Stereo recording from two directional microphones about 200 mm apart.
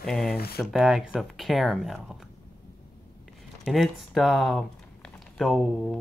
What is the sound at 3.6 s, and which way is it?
Speech, centre (ahead or behind).